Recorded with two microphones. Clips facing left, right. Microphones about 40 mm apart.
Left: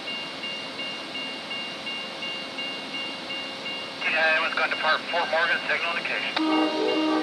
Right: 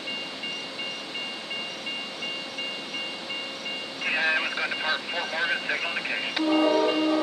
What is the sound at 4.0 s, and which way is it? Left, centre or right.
Speech, centre.